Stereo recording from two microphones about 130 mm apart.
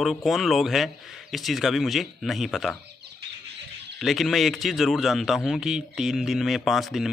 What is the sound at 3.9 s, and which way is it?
Speech, centre (ahead or behind).